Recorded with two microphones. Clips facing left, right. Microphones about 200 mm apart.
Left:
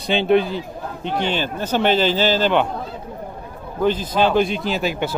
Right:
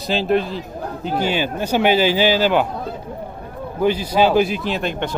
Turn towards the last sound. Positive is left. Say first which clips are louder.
# left 1 dB
turn(degrees=5)  # may be behind; listen again after turning